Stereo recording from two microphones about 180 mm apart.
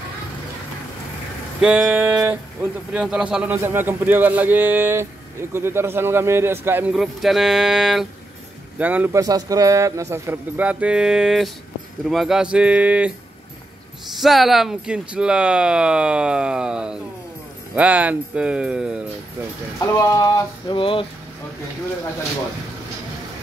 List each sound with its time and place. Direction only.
1.6 s speech: 10° right (ahead or behind)
14.2 s speech: centre (ahead or behind)
19.9 s a sound: 20° left (ahead or behind)